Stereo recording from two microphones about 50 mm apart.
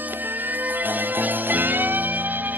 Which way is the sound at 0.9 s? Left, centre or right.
Right.